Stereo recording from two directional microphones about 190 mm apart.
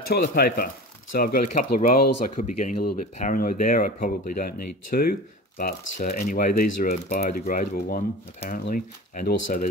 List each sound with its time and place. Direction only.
0.1 s speech: 55° left (ahead or behind)